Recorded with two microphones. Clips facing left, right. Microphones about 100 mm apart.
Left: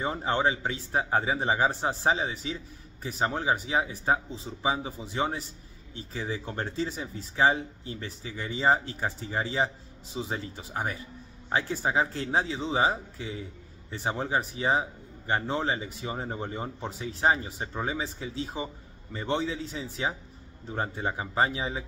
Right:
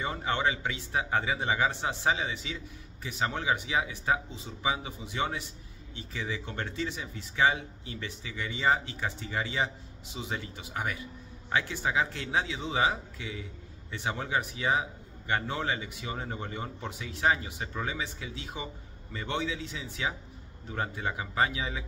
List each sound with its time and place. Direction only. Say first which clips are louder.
0.0 s a man's voice: left 3 dB; 35° left (ahead or behind)